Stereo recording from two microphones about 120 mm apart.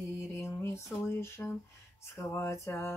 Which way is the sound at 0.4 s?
20° left (ahead or behind).